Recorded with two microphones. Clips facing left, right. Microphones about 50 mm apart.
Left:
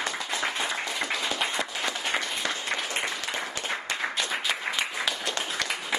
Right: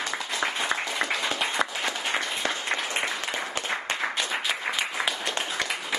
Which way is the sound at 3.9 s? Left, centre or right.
Right.